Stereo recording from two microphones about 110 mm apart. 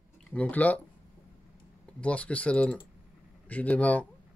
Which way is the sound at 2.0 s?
10° left (ahead or behind).